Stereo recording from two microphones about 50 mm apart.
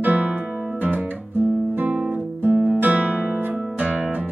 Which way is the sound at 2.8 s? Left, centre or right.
Right.